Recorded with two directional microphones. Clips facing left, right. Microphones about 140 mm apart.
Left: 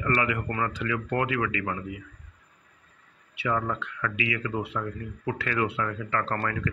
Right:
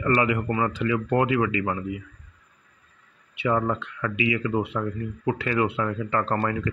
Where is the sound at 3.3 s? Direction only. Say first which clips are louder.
Right 4 dB; 25° right (ahead or behind).